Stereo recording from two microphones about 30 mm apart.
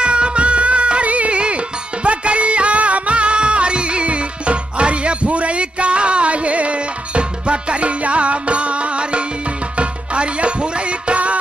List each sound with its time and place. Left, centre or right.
0.0 s music: right